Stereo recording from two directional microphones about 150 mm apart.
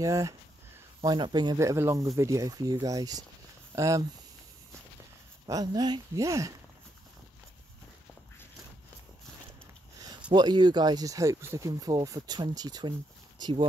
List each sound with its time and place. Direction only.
0.0 s speech: 20° right (ahead or behind)
5.5 s speech: 25° right (ahead or behind)
10.3 s speech: 30° right (ahead or behind)